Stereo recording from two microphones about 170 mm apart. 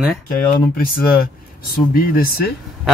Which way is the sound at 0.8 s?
60° left (ahead or behind).